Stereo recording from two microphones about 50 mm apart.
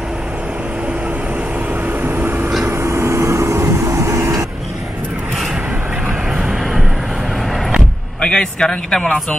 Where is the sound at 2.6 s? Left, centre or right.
Right.